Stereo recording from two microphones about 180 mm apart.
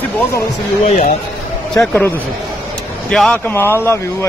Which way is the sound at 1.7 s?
5° left (ahead or behind).